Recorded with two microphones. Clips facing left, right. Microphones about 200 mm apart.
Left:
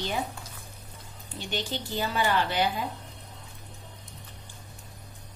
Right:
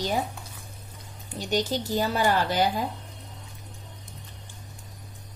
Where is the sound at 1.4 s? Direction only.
40° right (ahead or behind).